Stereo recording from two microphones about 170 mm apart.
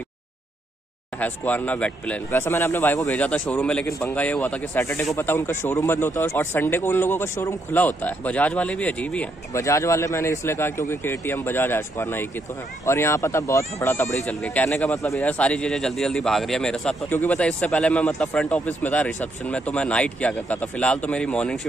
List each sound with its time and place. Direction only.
1.2 s speech: 10° left (ahead or behind)
14.2 s speech: 5° left (ahead or behind)